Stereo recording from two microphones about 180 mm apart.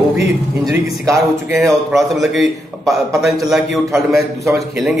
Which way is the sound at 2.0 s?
Centre (ahead or behind).